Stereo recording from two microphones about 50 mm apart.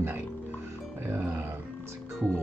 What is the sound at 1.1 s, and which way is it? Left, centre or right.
Speech, right.